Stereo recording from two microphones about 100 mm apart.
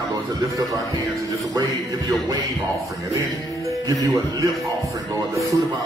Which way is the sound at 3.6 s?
35° right (ahead or behind).